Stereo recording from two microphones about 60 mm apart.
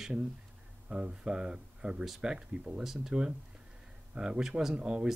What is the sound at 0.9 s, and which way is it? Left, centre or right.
Speech, centre.